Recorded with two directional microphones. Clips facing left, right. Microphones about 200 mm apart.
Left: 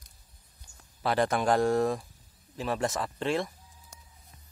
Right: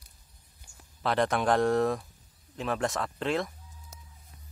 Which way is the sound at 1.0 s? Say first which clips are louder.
Even; centre (ahead or behind).